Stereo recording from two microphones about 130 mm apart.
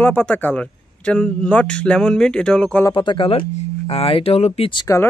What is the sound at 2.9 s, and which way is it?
Speech, 40° left (ahead or behind).